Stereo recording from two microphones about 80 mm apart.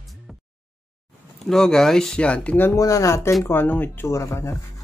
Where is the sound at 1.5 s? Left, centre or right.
Centre.